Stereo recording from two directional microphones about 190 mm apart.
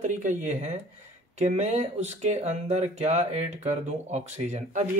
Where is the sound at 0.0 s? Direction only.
40° right (ahead or behind).